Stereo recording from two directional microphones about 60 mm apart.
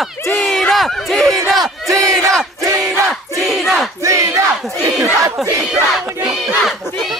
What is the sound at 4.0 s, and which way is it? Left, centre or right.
Battle cry, right.